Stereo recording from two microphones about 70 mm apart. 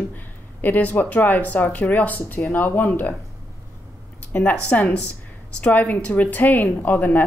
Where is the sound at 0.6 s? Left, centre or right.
Left.